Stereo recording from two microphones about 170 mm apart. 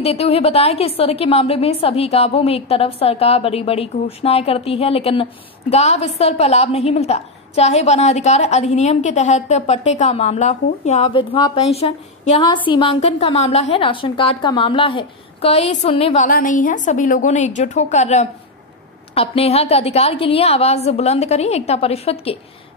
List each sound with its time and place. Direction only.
0.0 s a woman's voice: 35° left (ahead or behind)
16.3 s a woman's voice: 55° left (ahead or behind); by 22.4 s 35° left (ahead or behind)